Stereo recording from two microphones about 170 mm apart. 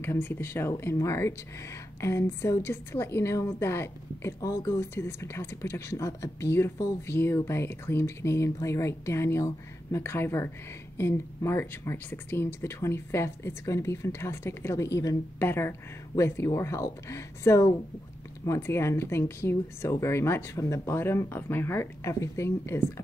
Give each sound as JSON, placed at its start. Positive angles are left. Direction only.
{"t": 0.0, "sound": "a woman's voice", "side_deg": 15}